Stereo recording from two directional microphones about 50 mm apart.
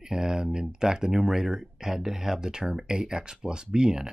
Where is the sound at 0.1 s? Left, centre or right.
Centre.